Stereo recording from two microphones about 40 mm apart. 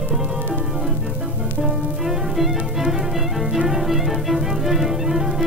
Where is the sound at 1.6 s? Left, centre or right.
Centre.